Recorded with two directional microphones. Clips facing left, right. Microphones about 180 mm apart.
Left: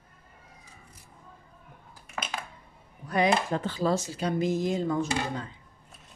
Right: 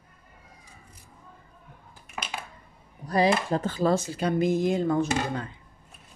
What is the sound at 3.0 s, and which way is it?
Speech, 35° right (ahead or behind).